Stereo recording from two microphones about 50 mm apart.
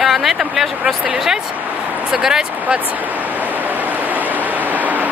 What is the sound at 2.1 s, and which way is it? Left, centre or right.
Speech, centre.